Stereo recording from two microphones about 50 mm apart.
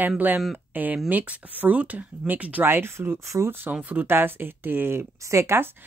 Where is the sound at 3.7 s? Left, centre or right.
Right.